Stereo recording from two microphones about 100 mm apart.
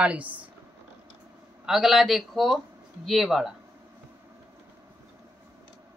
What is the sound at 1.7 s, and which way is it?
Speech, 5° right (ahead or behind).